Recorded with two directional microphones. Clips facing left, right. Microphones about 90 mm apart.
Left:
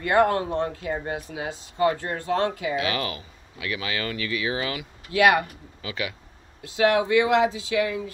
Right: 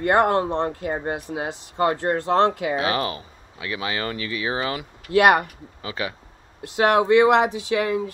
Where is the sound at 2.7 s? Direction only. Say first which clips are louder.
Right 3 dB; 30° right (ahead or behind).